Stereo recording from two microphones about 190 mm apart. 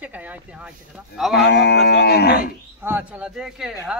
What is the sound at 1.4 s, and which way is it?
Cattle, 65° left (ahead or behind).